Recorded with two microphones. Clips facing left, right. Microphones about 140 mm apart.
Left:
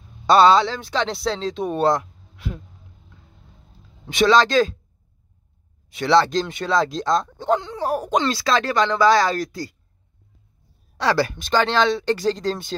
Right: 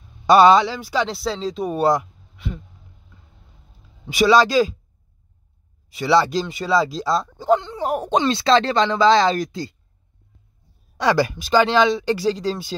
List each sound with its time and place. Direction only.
0.3 s speech: 15° right (ahead or behind)
2.3 s a sound: centre (ahead or behind)
4.0 s speech: 5° right (ahead or behind)
5.9 s speech: 5° right (ahead or behind)
7.8 s speech: 25° right (ahead or behind)
11.0 s speech: 15° right (ahead or behind)